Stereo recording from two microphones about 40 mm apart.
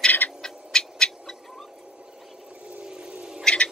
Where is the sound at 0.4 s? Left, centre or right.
Centre.